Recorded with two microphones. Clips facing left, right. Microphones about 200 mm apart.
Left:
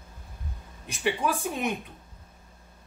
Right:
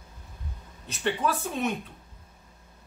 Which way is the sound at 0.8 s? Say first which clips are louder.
Even; 10° left (ahead or behind).